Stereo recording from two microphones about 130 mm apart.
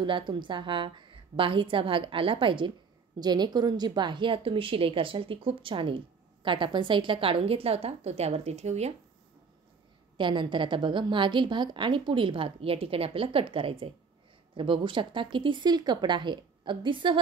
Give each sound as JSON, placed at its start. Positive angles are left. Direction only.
{"t": 0.0, "sound": "a woman's voice", "side_deg": -40}
{"t": 10.1, "sound": "a woman's voice", "side_deg": -40}